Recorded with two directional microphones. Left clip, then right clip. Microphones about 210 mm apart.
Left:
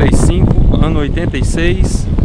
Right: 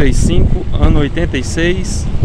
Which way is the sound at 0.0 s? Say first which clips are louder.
Left 2 dB; 15° left (ahead or behind).